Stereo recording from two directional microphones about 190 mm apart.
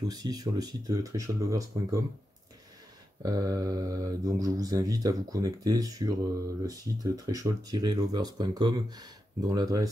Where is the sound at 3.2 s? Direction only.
20° right (ahead or behind).